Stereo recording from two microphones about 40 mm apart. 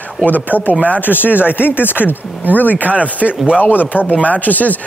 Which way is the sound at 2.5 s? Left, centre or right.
Left.